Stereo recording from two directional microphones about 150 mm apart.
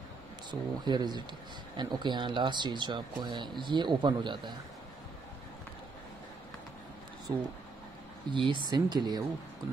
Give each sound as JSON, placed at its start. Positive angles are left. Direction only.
{"t": 0.5, "sound": "speech", "side_deg": -30}
{"t": 8.3, "sound": "speech", "side_deg": -30}